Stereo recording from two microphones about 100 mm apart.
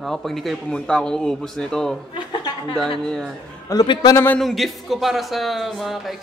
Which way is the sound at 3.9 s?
45° left (ahead or behind).